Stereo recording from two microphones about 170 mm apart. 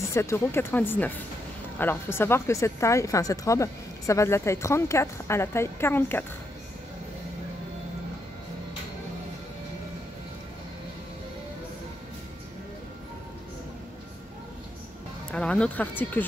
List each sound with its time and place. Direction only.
0.1 s speech: 15° left (ahead or behind)
15.3 s speech: 5° left (ahead or behind)